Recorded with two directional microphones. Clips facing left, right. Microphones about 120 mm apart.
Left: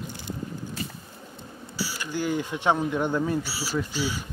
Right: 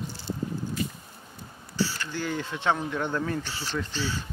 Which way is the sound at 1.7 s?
10° left (ahead or behind).